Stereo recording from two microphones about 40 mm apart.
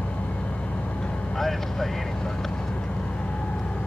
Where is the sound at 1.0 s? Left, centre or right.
Left.